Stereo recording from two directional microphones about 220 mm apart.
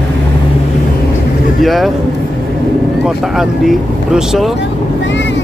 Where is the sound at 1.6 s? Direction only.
Centre (ahead or behind).